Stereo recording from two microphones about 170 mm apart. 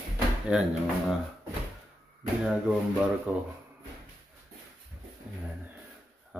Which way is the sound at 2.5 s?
5° right (ahead or behind).